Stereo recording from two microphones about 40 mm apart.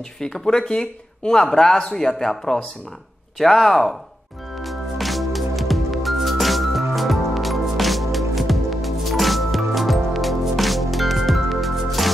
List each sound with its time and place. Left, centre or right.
0.2 s speech: centre
4.6 s music: centre